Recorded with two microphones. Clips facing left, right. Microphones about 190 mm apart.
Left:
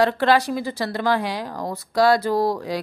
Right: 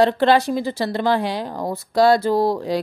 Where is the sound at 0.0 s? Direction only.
25° right (ahead or behind).